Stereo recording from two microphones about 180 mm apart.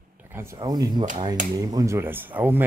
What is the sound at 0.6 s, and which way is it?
Speech, 20° right (ahead or behind).